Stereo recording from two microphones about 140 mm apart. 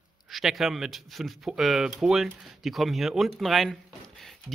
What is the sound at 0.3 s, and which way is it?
Speech, centre (ahead or behind).